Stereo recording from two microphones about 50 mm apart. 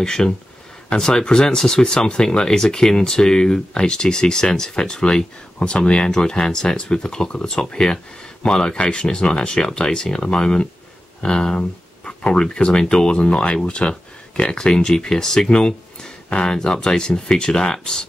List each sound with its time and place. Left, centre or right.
0.0 s speech: centre